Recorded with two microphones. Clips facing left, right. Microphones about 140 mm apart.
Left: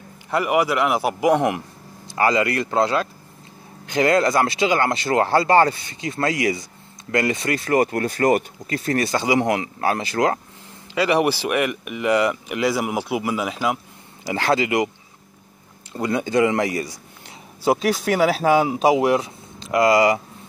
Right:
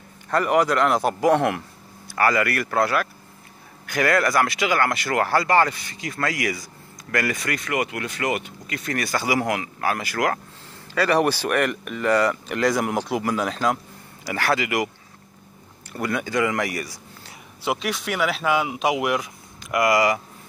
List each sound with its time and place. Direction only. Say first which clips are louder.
0.3 s speech: even; 10° left (ahead or behind)
11.0 s speech: left 1 dB; 15° left (ahead or behind)
14.2 s speech: left 3 dB; 25° left (ahead or behind)
15.9 s speech: left 4 dB; 25° left (ahead or behind)
17.6 s speech: left 7 dB; 40° left (ahead or behind)